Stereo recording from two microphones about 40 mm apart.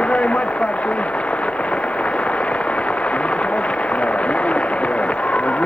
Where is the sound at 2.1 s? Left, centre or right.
Left.